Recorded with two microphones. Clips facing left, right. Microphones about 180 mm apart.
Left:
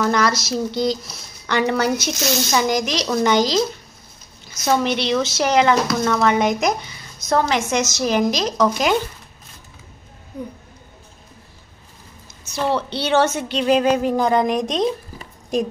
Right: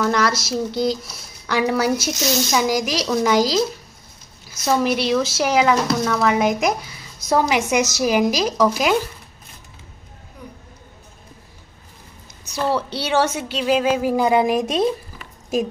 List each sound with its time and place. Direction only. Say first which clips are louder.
0.0 s a woman's voice: left 1 dB; centre (ahead or behind)
10.3 s speech: left 9 dB; 25° left (ahead or behind)
12.6 s a woman's voice: left 1 dB; 5° right (ahead or behind)